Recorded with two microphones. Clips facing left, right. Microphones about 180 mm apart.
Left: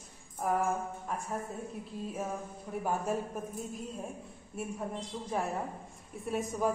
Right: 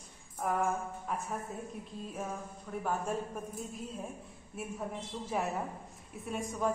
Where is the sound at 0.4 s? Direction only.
Centre (ahead or behind).